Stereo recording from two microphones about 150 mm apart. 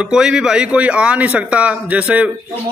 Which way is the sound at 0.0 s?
5° right (ahead or behind).